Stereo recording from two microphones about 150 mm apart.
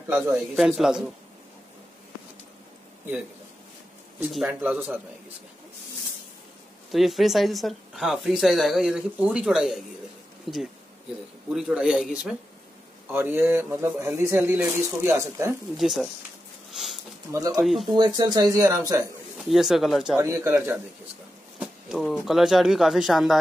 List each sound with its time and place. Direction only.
0.6 s a woman's voice: centre (ahead or behind)
4.3 s a woman's voice: centre (ahead or behind)
4.6 s a man's voice: 10° right (ahead or behind)
6.9 s a woman's voice: centre (ahead or behind)
13.1 s a man's voice: 15° right (ahead or behind)
15.8 s a woman's voice: centre (ahead or behind)
17.3 s speech: 20° right (ahead or behind)
17.6 s a woman's voice: centre (ahead or behind)
17.9 s speech: 30° right (ahead or behind)
19.3 s a woman's voice: centre (ahead or behind)
20.2 s a man's voice: 20° right (ahead or behind)
21.5 s a sound: centre (ahead or behind)
22.2 s a woman's voice: centre (ahead or behind)